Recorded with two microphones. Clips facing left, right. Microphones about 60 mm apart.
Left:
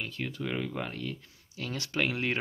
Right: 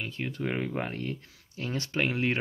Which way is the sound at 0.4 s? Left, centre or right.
Right.